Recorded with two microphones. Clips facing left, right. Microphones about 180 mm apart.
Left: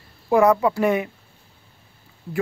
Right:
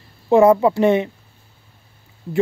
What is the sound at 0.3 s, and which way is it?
Speech, 25° right (ahead or behind).